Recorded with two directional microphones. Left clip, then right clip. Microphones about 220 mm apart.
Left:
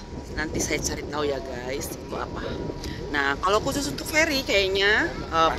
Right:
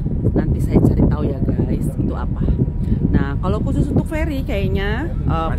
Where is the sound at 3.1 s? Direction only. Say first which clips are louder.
Left 3 dB; 5° left (ahead or behind).